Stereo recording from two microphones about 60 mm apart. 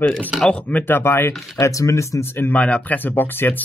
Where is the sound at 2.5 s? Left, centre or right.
Left.